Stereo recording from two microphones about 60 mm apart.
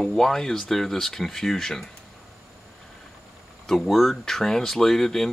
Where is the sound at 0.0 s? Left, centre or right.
Centre.